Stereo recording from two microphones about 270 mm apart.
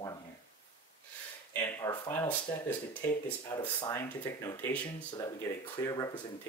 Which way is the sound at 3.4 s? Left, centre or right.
Centre.